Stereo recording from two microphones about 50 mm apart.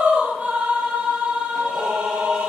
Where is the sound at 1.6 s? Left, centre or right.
Centre.